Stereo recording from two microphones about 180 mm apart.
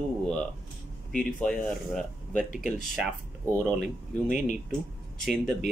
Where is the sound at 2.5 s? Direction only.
50° left (ahead or behind).